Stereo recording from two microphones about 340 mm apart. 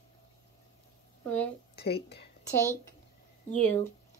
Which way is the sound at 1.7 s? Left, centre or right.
Left.